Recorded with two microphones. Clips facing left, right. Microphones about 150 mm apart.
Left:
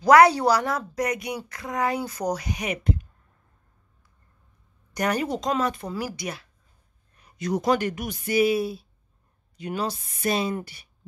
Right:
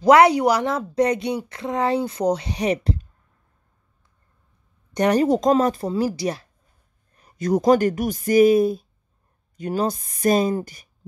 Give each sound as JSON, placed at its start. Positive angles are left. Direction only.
{"t": 0.0, "sound": "a woman's voice", "side_deg": -20}
{"t": 4.9, "sound": "speech", "side_deg": -30}